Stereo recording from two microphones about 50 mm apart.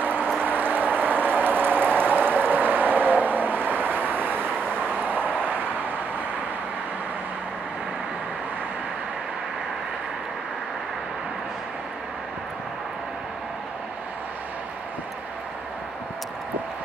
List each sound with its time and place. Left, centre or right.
0.0 s a sound: right
4.6 s vehicle: centre
4.9 s vehicle: right